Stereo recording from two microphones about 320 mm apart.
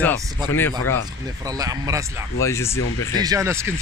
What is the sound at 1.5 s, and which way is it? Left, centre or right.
Speech, centre.